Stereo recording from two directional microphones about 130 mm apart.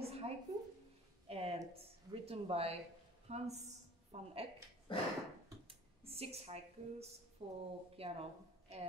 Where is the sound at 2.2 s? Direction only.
50° right (ahead or behind).